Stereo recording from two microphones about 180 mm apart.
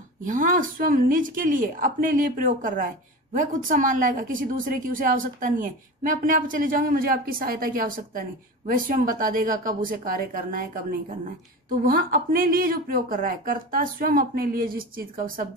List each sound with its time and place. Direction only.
0.2 s a woman's voice: 45° right (ahead or behind)